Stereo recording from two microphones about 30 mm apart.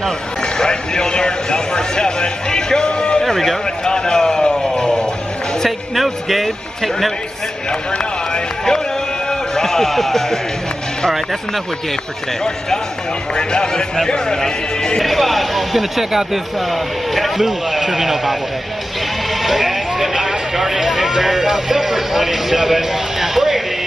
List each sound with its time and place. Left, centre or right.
0.4 s a sound: left
3.2 s a sound: centre
3.8 s a sound: left
5.9 s a man's voice: centre
8.0 s speech: left
9.3 s speech: centre
12.4 s speech: centre
13.3 s a man's voice: left
15.0 s speech: centre
16.7 s speech: centre
17.4 s a man's voice: centre
19.4 s a sound: centre
20.2 s speech: centre